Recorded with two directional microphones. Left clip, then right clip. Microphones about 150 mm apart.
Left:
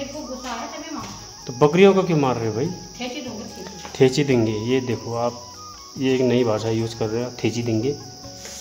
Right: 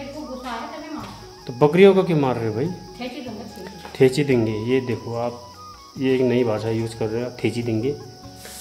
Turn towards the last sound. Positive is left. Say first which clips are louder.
# even
turn(degrees=15)  # may be behind; listen again after turning